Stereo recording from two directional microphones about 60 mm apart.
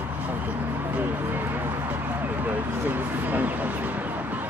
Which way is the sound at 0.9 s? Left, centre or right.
Right.